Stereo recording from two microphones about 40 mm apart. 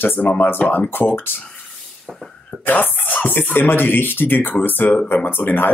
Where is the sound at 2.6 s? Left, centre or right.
Left.